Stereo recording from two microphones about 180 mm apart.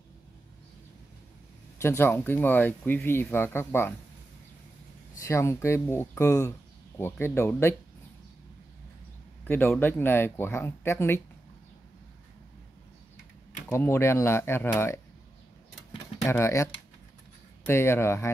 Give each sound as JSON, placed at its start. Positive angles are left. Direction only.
{"t": 1.8, "sound": "speech", "side_deg": 15}
{"t": 5.2, "sound": "speech", "side_deg": 15}
{"t": 9.4, "sound": "speech", "side_deg": 10}
{"t": 13.7, "sound": "speech", "side_deg": 15}
{"t": 16.3, "sound": "speech", "side_deg": 15}
{"t": 17.6, "sound": "speech", "side_deg": 15}